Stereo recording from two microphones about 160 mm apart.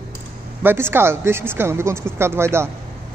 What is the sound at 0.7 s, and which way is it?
A man's voice, 15° right (ahead or behind).